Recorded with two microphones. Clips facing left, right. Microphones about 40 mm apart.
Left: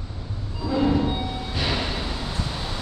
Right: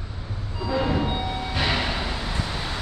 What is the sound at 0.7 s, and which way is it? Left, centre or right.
Train, centre.